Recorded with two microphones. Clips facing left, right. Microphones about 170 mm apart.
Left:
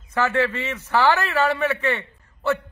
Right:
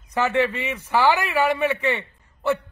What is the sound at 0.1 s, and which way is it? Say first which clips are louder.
A man's voice: even; 15° right (ahead or behind).